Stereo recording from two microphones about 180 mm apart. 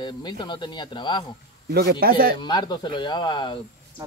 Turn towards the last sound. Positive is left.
turn(degrees=25)  # may be behind; listen again after turning